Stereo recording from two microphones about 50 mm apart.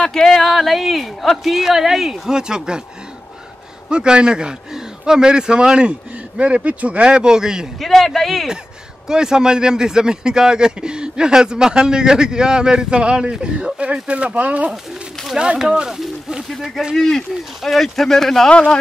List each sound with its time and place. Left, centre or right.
0.0 s speech: centre
3.9 s a man's voice: centre
7.8 s speech: centre
9.0 s a man's voice: centre
16.9 s speech: centre